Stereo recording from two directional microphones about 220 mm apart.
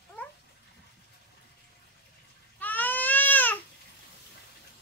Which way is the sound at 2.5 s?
10° left (ahead or behind).